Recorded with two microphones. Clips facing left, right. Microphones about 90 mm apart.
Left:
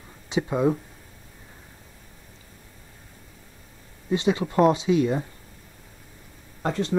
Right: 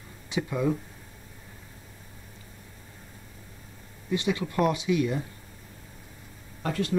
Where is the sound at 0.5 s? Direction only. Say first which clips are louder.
Left 5 dB; 30° left (ahead or behind).